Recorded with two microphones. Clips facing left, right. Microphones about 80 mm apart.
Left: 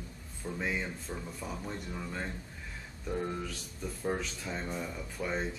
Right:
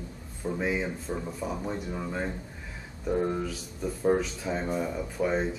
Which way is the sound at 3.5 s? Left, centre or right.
Centre.